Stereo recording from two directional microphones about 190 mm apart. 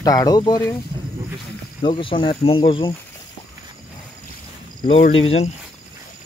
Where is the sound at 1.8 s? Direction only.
25° left (ahead or behind).